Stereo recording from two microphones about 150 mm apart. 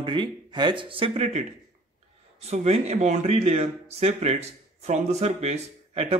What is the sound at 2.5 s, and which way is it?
Speech, 45° right (ahead or behind).